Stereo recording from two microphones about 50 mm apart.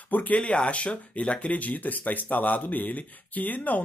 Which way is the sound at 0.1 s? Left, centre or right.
Left.